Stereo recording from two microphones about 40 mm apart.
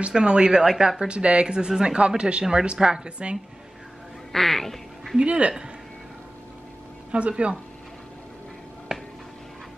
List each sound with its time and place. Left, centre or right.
0.1 s speech: right
4.3 s speech: centre
5.2 s speech: right
7.1 s speech: right
8.9 s a sound: centre